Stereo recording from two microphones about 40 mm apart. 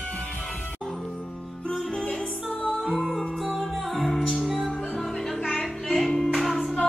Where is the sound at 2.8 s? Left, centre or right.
Centre.